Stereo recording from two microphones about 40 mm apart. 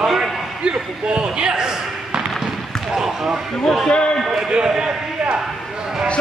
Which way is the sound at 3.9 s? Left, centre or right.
Left.